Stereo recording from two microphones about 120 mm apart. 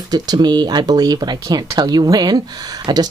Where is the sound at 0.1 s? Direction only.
35° right (ahead or behind).